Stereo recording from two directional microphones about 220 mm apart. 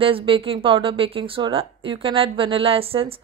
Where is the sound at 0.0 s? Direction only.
25° right (ahead or behind).